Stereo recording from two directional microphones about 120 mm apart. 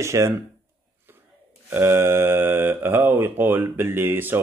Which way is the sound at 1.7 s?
20° right (ahead or behind).